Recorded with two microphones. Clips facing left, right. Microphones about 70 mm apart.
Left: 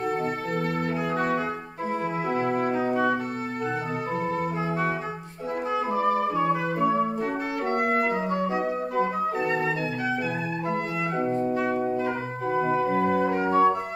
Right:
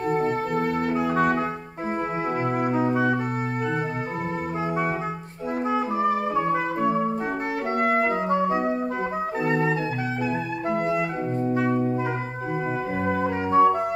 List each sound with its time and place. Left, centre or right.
0.1 s music: right
1.1 s brass instrument: right
2.5 s music: centre
6.3 s music: right
7.9 s clarinet: right
9.4 s organ: centre
13.5 s music: centre